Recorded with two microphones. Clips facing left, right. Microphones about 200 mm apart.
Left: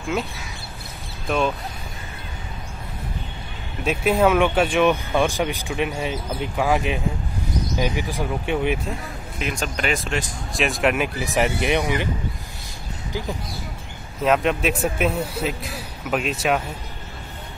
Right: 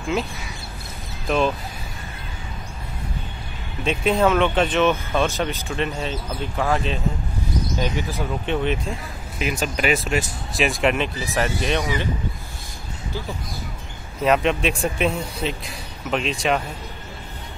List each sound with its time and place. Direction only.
1.2 s speech: centre (ahead or behind)
3.8 s speech: 5° left (ahead or behind)
9.4 s a man's voice: 5° right (ahead or behind)
11.1 s speech: 15° left (ahead or behind)
14.2 s a man's voice: centre (ahead or behind)